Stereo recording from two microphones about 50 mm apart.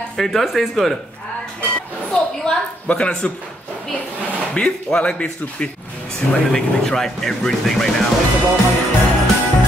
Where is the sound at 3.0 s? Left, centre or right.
Centre.